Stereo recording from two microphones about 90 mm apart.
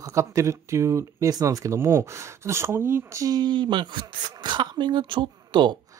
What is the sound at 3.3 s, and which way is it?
Speech, 55° right (ahead or behind).